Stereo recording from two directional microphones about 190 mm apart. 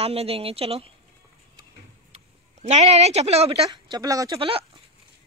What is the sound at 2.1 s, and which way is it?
Speech, 35° right (ahead or behind).